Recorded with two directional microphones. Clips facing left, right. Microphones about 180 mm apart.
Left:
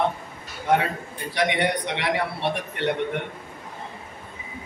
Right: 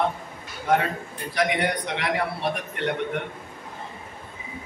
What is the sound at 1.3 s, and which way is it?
A man's voice, centre (ahead or behind).